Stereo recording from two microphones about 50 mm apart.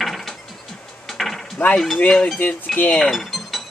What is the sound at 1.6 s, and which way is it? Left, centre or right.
Speech, left.